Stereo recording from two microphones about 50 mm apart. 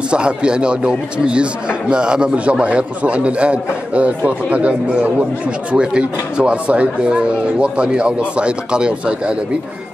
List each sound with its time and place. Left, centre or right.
0.1 s speech: centre